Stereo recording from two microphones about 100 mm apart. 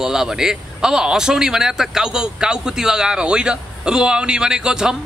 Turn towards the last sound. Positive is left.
turn(degrees=-5)  # may be behind; listen again after turning